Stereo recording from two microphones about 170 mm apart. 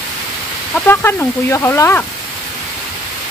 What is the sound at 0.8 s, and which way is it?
Speech, 15° left (ahead or behind).